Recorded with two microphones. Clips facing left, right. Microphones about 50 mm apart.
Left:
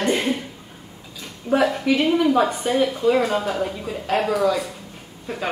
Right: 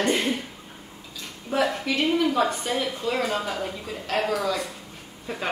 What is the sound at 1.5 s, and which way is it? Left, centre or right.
A woman's voice, centre.